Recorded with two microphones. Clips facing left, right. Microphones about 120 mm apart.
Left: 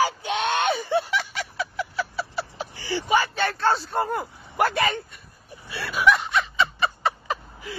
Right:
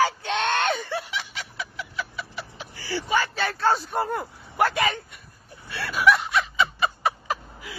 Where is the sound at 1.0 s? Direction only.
50° left (ahead or behind).